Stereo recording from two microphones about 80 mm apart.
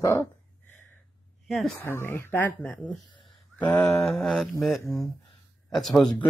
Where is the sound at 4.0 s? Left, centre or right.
Centre.